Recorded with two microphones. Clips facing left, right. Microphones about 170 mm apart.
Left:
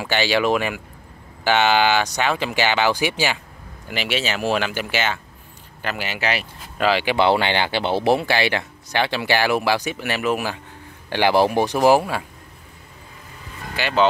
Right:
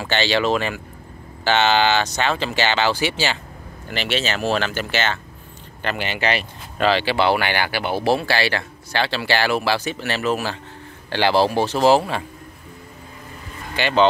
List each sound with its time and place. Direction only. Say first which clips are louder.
0.0 s speech: even; 10° left (ahead or behind)
13.7 s speech: right 2 dB; 5° left (ahead or behind)